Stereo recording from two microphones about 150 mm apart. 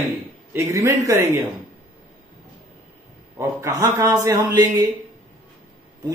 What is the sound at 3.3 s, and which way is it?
A man's voice, 25° right (ahead or behind).